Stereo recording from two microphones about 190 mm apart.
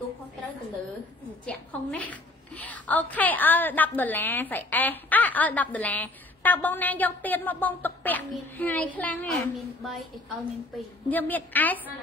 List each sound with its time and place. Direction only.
1.4 s a woman's voice: 5° left (ahead or behind)
11.1 s a woman's voice: 10° left (ahead or behind)